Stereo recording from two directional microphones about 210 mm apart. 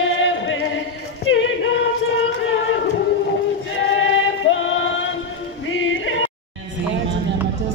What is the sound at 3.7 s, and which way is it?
Music, 65° left (ahead or behind).